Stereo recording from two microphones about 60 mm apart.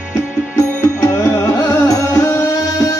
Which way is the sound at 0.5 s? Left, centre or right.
Left.